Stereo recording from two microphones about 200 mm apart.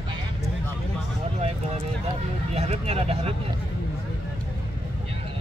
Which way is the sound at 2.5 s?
30° right (ahead or behind).